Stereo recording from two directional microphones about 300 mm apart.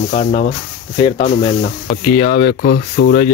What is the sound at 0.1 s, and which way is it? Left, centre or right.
Speech, left.